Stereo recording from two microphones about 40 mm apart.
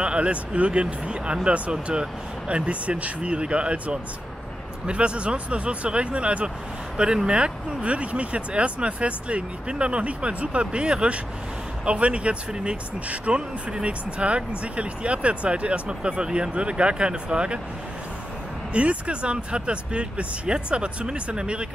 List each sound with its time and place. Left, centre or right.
0.0 s speech: right
18.7 s speech: right